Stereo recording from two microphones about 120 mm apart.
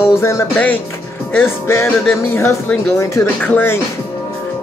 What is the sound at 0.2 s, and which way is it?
Music, 25° left (ahead or behind).